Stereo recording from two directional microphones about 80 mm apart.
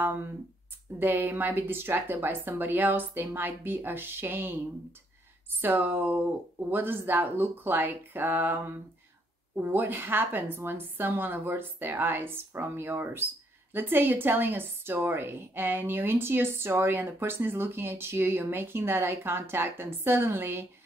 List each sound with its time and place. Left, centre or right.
0.0 s a woman's voice: right